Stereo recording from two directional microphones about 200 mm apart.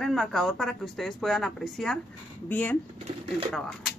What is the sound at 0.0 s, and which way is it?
Speech, centre (ahead or behind).